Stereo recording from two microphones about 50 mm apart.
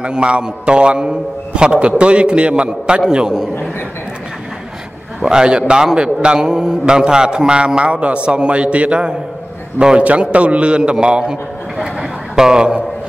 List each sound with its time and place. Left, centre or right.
0.0 s a man's voice: right
5.2 s a man's voice: centre